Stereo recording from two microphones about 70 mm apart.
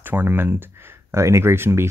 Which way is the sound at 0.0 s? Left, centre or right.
Right.